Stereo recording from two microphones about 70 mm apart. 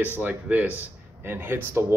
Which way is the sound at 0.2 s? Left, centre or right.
Right.